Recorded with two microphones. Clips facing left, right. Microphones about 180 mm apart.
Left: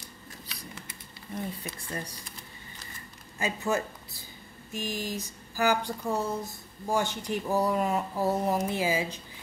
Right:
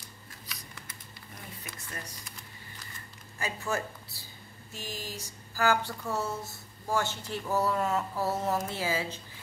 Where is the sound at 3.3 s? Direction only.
20° left (ahead or behind).